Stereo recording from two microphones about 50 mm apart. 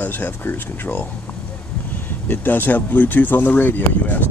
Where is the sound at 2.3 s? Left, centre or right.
Left.